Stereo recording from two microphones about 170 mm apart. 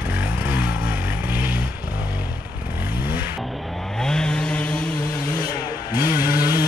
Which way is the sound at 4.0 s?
5° left (ahead or behind).